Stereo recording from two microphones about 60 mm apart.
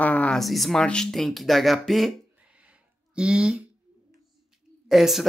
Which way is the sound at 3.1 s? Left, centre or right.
Centre.